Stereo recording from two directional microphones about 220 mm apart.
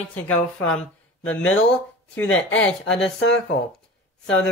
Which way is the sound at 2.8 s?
55° left (ahead or behind).